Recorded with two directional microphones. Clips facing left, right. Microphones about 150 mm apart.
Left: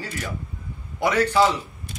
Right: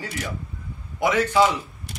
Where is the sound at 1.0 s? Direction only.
20° right (ahead or behind).